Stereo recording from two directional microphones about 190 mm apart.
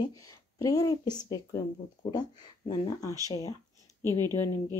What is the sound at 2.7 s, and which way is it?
Speech, 20° left (ahead or behind).